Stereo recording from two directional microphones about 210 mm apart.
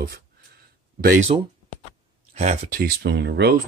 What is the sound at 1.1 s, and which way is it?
Speech, 35° right (ahead or behind).